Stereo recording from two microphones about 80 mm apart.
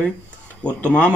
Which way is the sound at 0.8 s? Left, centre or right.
Centre.